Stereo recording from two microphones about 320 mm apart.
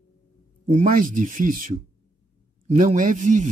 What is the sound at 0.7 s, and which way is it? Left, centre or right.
Speech, right.